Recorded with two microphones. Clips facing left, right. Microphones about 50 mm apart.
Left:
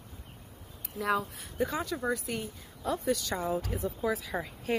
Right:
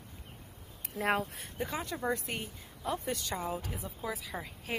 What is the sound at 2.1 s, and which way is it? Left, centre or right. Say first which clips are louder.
Speech: left 2 dB; right.